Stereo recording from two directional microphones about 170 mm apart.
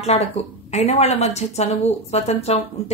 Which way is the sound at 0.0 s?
40° left (ahead or behind).